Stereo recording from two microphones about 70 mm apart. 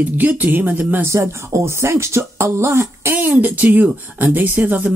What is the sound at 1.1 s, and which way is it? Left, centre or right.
Speech, right.